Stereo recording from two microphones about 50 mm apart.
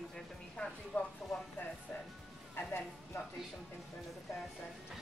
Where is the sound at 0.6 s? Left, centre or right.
Left.